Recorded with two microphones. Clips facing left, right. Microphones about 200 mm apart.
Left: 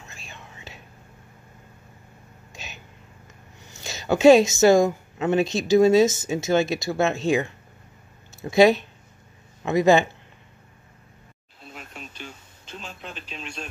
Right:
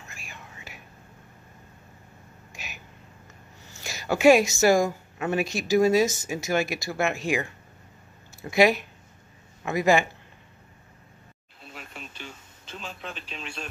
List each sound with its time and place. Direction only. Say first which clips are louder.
0.1 s whispering: left 1 dB; 25° left (ahead or behind)
2.5 s a sound: left 2 dB; 25° left (ahead or behind)
3.6 s a woman's voice: left 3 dB; 20° left (ahead or behind)
12.7 s speech: even; centre (ahead or behind)